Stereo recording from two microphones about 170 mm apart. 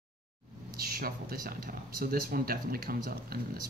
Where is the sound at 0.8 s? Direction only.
60° right (ahead or behind).